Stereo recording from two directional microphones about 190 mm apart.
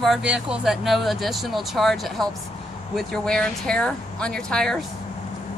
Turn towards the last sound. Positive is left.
turn(degrees=5)  # may be behind; listen again after turning